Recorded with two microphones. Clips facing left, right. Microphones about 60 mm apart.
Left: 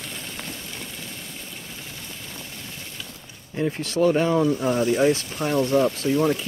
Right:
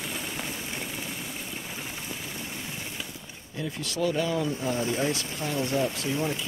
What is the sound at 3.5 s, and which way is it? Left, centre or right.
Speech, left.